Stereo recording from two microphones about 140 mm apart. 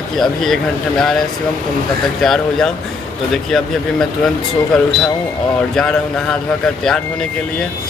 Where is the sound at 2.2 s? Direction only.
5° left (ahead or behind).